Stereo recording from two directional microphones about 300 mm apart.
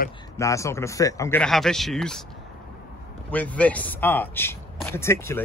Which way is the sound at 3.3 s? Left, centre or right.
Centre.